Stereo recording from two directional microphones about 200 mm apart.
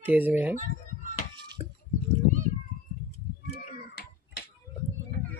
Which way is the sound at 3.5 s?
55° left (ahead or behind).